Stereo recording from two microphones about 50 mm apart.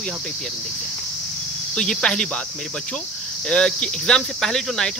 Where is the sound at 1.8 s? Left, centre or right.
Centre.